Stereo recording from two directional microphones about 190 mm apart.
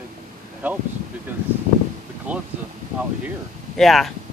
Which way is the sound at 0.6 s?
10° right (ahead or behind).